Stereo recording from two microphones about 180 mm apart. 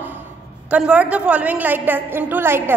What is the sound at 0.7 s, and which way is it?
A woman's voice, 5° right (ahead or behind).